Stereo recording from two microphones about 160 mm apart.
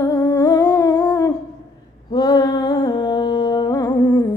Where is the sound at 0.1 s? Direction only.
25° left (ahead or behind).